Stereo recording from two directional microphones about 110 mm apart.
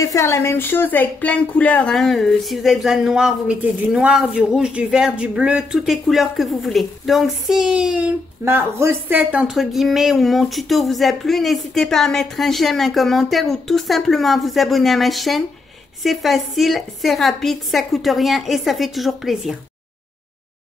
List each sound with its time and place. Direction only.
0.0 s a woman's voice: 25° left (ahead or behind)
2.0 s speech: centre (ahead or behind)
8.5 s speech: 25° right (ahead or behind)
9.3 s speech: 5° right (ahead or behind)